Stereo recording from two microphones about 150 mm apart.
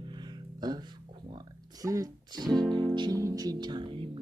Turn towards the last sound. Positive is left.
turn(degrees=-35)  # may be behind; listen again after turning